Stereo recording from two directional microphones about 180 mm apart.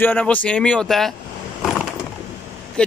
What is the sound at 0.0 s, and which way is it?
Speech, 10° left (ahead or behind).